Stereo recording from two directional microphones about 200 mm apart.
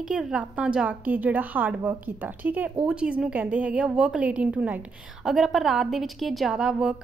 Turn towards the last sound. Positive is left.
turn(degrees=-5)  # may be behind; listen again after turning